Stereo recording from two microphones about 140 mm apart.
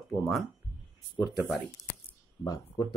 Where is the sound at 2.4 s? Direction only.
30° left (ahead or behind).